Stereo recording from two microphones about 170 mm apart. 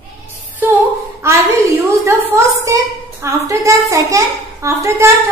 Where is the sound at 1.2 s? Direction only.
15° right (ahead or behind).